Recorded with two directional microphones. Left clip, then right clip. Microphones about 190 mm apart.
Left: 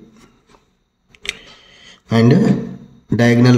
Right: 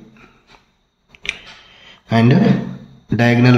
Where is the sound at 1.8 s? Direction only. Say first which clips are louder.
Left 1 dB; 25° left (ahead or behind).